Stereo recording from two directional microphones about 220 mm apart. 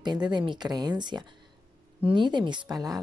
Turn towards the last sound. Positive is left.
turn(degrees=-15)  # may be behind; listen again after turning